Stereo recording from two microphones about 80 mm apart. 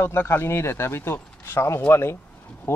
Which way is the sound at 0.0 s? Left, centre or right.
Left.